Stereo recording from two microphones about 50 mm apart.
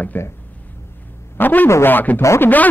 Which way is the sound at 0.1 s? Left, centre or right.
Left.